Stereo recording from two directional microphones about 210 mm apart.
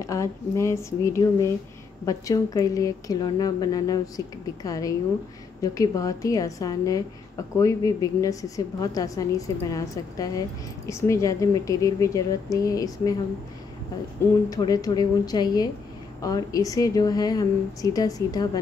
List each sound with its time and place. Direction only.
0.0 s a woman's voice: 15° left (ahead or behind)
14.5 s a woman's voice: 15° left (ahead or behind)